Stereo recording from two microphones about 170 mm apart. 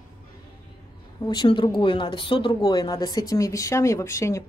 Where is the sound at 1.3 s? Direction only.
25° left (ahead or behind).